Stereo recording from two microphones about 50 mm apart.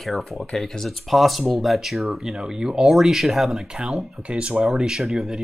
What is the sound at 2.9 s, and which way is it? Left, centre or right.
Speech, centre.